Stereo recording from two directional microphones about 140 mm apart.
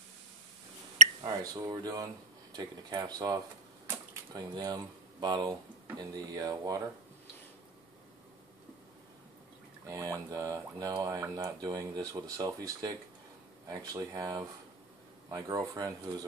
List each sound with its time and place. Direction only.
1.2 s speech: 30° right (ahead or behind)
9.8 s speech: 25° right (ahead or behind)